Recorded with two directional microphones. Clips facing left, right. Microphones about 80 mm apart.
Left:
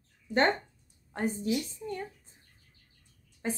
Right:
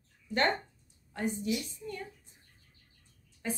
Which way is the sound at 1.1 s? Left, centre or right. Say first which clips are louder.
Left 3 dB; left.